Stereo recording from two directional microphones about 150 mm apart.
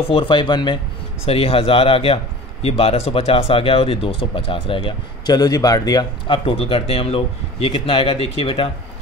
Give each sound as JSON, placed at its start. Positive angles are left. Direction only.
{"t": 0.1, "sound": "speech", "side_deg": 35}